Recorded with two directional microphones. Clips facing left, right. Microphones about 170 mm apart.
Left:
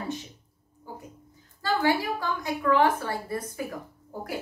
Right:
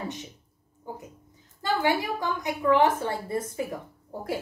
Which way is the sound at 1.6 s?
20° right (ahead or behind).